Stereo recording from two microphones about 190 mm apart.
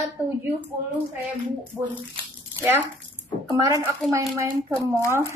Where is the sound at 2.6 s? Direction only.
10° right (ahead or behind).